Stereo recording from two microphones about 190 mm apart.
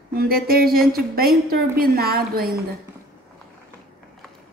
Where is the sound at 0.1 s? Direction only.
50° right (ahead or behind).